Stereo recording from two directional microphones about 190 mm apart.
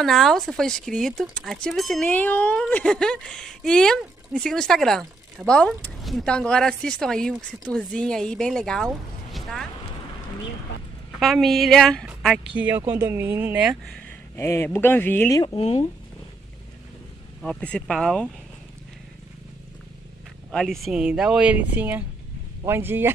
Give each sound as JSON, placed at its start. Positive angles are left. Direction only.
{"t": 0.0, "sound": "speech", "side_deg": 0}
{"t": 11.1, "sound": "a woman's voice", "side_deg": 0}
{"t": 14.3, "sound": "speech", "side_deg": 10}
{"t": 15.4, "sound": "speech", "side_deg": 30}
{"t": 17.4, "sound": "speech", "side_deg": 5}
{"t": 20.5, "sound": "speech", "side_deg": 0}